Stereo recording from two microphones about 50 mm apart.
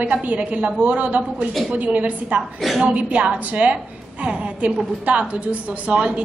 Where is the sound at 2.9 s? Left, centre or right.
Right.